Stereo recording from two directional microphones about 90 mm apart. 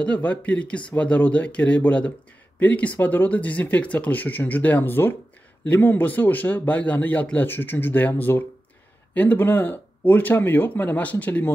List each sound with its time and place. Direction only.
0.0 s speech: 15° left (ahead or behind)